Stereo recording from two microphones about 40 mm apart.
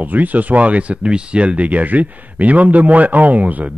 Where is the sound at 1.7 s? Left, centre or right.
Right.